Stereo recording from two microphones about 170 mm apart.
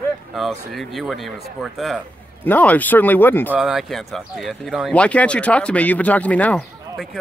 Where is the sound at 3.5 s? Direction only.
Centre (ahead or behind).